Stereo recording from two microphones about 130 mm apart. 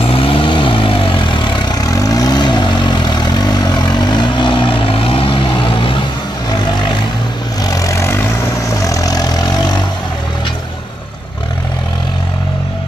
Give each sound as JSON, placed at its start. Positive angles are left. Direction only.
{"t": 0.1, "sound": "vehicle", "side_deg": 45}
{"t": 7.6, "sound": "vehicle", "side_deg": 25}